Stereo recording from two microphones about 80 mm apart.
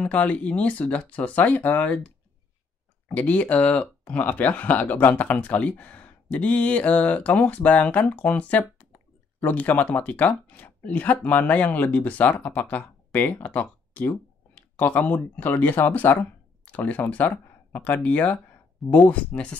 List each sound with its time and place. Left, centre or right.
0.0 s speech: centre
3.1 s speech: centre